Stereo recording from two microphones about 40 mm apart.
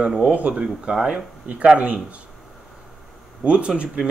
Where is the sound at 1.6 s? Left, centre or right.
Right.